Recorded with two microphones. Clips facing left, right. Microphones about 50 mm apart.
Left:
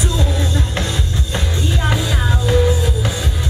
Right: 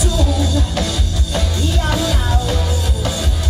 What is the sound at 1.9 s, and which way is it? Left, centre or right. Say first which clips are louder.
Music: right 1 dB; left.